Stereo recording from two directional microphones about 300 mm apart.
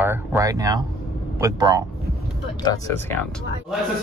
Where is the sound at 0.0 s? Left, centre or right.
Centre.